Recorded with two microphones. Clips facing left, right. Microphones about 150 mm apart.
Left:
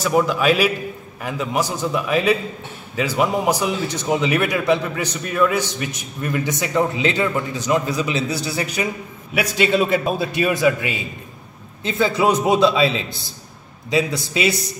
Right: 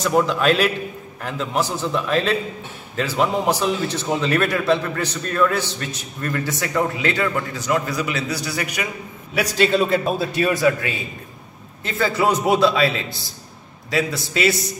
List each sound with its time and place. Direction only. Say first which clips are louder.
0.0 s a man's voice: even; 5° left (ahead or behind); by 8.8 s 30° left (ahead or behind)
9.4 s a man's voice: even; 5° left (ahead or behind)
11.8 s a man's voice: left 2 dB; 20° left (ahead or behind)